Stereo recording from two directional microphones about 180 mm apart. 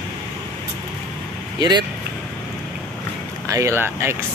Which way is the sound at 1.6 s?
25° right (ahead or behind).